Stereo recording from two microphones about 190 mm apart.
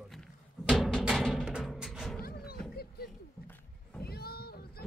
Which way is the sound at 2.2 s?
55° left (ahead or behind).